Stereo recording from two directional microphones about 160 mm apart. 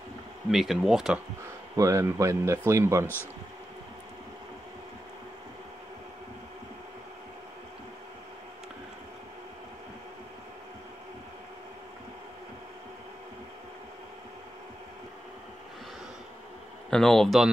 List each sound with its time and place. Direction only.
0.5 s speech: centre (ahead or behind)
1.8 s speech: 20° right (ahead or behind)
16.9 s speech: centre (ahead or behind)